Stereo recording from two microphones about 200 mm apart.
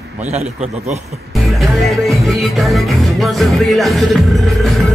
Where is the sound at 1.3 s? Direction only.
Centre (ahead or behind).